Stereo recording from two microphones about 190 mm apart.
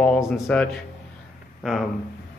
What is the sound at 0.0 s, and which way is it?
Speech, centre (ahead or behind).